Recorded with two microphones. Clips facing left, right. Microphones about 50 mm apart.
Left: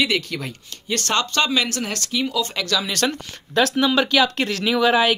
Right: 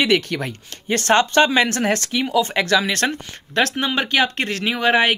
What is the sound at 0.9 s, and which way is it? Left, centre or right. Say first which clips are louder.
Speech: right 6 dB; right.